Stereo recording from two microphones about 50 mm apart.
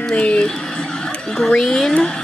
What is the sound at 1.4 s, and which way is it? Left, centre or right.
Speech, centre.